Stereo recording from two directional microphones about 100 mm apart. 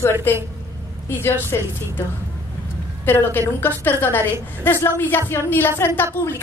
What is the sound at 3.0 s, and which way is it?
A man's voice, 20° left (ahead or behind).